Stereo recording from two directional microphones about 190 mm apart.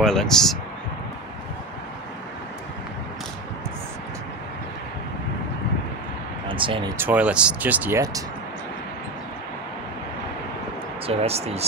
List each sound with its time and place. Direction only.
0.0 s speech: 5° left (ahead or behind)
6.5 s speech: 25° right (ahead or behind)
7.0 s speech: 10° right (ahead or behind)
11.1 s speech: 35° right (ahead or behind)